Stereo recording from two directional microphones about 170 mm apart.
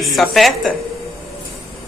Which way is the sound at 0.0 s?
Centre (ahead or behind).